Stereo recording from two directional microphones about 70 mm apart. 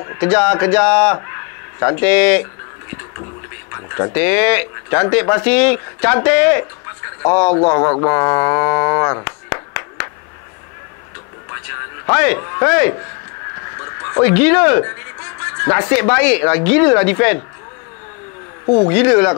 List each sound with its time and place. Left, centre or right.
0.0 s speech: left
1.1 s a sound: left
2.0 s speech: centre
3.7 s speech: left
4.1 s speech: left
11.5 s a sound: left
12.4 s speech: left
12.6 s speech: centre
13.7 s a sound: left
14.2 s speech: left
18.9 s speech: left